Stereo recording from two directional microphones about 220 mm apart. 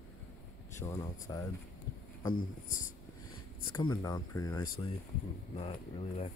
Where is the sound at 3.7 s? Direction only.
20° left (ahead or behind).